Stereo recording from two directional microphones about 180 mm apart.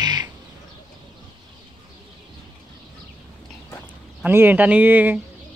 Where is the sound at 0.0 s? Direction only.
25° right (ahead or behind).